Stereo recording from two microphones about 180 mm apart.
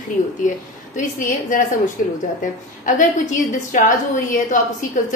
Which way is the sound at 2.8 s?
45° left (ahead or behind).